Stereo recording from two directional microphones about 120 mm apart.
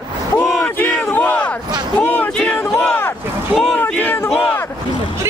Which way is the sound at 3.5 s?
5° left (ahead or behind).